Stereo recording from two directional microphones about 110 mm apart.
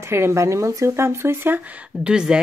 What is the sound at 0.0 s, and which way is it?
Speech, 25° right (ahead or behind).